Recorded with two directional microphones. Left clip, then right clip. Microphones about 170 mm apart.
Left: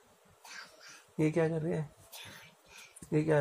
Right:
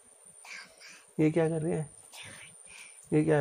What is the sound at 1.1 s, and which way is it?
Speech, 50° right (ahead or behind).